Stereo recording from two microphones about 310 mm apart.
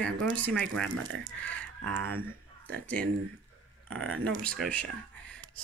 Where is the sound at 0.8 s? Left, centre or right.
Right.